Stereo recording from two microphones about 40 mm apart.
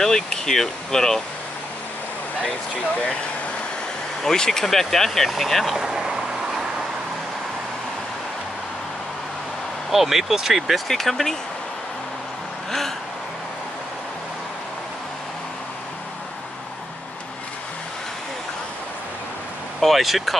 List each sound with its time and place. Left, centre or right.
0.0 s speech: centre
4.2 s speech: centre
5.8 s vehicle: centre
9.8 s speech: centre
19.8 s speech: centre